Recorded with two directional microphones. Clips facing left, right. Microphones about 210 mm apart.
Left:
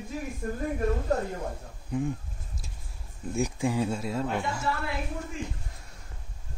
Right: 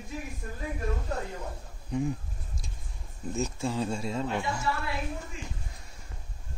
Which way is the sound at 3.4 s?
15° left (ahead or behind).